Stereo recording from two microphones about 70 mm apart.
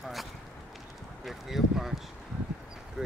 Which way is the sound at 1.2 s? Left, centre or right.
Centre.